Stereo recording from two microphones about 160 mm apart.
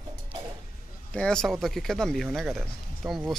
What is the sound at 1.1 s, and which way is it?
Speech, 5° left (ahead or behind).